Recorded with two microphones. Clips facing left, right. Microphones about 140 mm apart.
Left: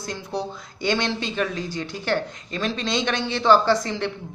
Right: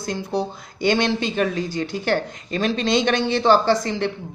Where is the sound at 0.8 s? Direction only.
55° right (ahead or behind).